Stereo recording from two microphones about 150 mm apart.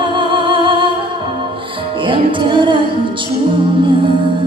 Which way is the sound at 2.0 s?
35° right (ahead or behind).